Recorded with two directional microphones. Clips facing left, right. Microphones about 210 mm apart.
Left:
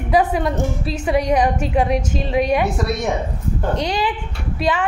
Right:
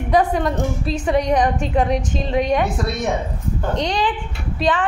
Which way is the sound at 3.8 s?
10° left (ahead or behind).